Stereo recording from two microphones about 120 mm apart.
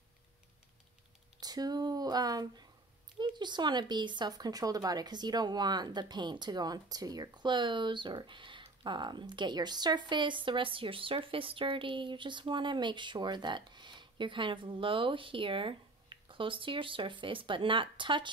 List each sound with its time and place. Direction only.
1.4 s speech: 35° right (ahead or behind)